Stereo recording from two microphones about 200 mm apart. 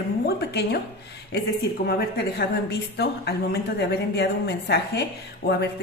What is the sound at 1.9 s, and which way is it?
A woman's voice, 50° left (ahead or behind).